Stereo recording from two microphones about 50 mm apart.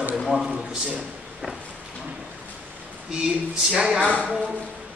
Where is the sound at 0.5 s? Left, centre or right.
Right.